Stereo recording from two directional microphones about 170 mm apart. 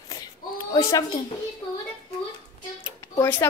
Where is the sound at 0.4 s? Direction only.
55° left (ahead or behind).